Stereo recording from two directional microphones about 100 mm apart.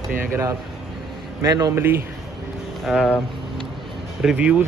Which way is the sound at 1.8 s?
20° right (ahead or behind).